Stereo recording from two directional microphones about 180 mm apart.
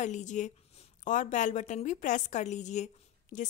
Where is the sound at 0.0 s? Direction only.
40° left (ahead or behind).